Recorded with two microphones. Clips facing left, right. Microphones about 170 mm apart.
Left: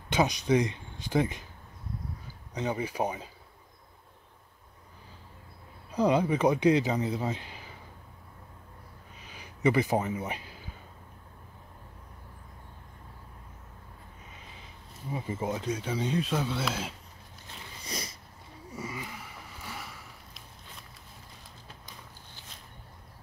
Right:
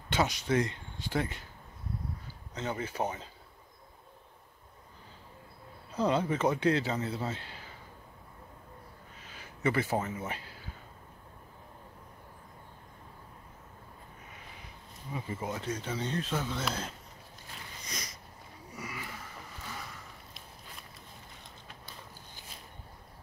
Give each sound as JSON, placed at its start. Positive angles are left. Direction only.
{"t": 0.1, "sound": "speech", "side_deg": 15}
{"t": 2.5, "sound": "speech", "side_deg": 15}
{"t": 5.9, "sound": "speech", "side_deg": 15}
{"t": 9.2, "sound": "a sound", "side_deg": 15}
{"t": 15.1, "sound": "speech", "side_deg": 25}
{"t": 15.6, "sound": "speech", "side_deg": 10}
{"t": 17.8, "sound": "a sound", "side_deg": 30}